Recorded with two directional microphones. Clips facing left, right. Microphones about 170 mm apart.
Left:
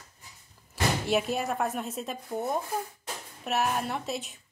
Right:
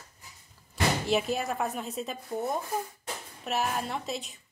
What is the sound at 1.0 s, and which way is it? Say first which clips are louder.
A woman's voice: even; centre (ahead or behind).